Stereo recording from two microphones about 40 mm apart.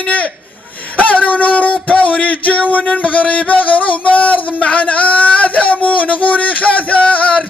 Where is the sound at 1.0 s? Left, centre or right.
Left.